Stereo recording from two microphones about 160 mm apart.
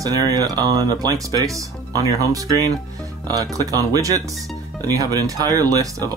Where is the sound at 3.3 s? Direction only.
20° right (ahead or behind).